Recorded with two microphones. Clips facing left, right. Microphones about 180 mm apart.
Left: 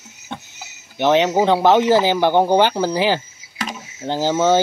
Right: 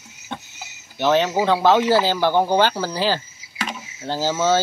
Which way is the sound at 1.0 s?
20° left (ahead or behind).